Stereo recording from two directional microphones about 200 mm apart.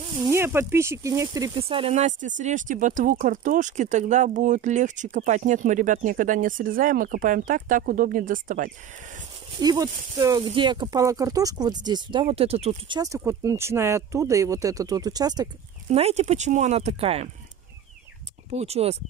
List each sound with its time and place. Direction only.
0.1 s speech: 15° right (ahead or behind)
1.6 s speech: 30° right (ahead or behind)
9.6 s speech: 20° right (ahead or behind)
15.9 s speech: 30° right (ahead or behind)
18.5 s speech: 30° right (ahead or behind)